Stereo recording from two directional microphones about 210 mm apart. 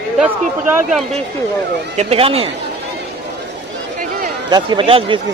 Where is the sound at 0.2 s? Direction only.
5° right (ahead or behind).